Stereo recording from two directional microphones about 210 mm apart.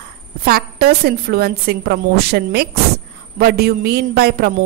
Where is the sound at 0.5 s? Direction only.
45° right (ahead or behind).